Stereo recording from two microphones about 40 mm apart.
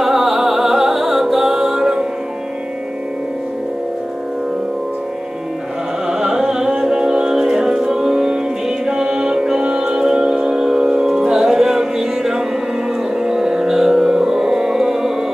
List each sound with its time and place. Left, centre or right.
0.0 s music: centre
6.0 s music: centre